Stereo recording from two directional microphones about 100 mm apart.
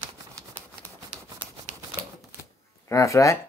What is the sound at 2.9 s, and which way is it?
Speech, 30° left (ahead or behind).